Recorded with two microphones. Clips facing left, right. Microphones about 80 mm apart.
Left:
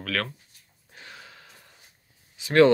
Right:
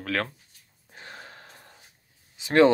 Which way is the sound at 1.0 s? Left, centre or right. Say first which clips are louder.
Right 3 dB; right.